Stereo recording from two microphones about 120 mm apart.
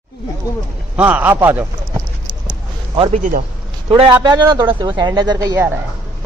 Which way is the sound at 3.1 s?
90° right.